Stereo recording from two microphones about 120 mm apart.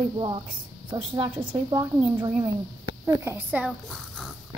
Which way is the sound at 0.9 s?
45° right (ahead or behind).